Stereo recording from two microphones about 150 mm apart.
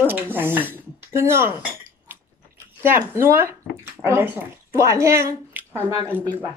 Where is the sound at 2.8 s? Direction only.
15° right (ahead or behind).